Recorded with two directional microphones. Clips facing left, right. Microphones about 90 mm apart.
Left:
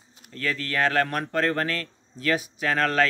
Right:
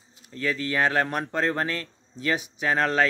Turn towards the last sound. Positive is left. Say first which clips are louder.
# even
turn(degrees=-20)  # may be behind; listen again after turning